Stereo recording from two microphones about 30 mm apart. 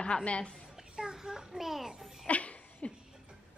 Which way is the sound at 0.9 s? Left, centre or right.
Centre.